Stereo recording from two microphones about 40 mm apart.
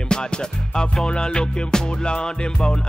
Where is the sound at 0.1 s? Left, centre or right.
Left.